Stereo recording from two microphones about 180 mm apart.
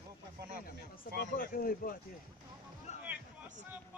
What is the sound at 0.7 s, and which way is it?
A man's voice, 55° left (ahead or behind).